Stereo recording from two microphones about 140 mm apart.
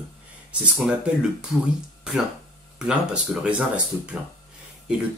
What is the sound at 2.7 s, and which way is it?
Speech, 5° right (ahead or behind).